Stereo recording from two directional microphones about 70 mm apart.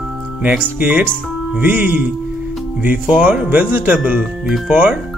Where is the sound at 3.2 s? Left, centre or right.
Right.